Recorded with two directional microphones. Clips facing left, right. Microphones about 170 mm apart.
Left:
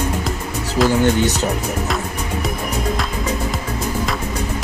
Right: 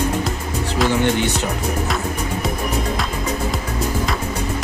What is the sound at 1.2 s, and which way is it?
Speech, 40° left (ahead or behind).